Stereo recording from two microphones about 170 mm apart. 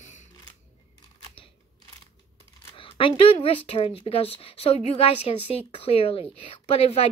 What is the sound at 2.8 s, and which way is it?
Speech, 30° left (ahead or behind).